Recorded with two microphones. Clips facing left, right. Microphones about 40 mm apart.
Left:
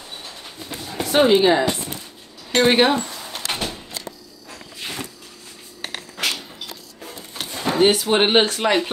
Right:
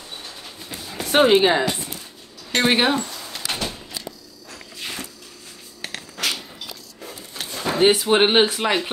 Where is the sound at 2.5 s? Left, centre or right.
Centre.